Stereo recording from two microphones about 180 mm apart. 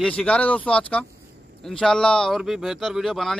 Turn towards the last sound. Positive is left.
turn(degrees=0)  # may be behind; listen again after turning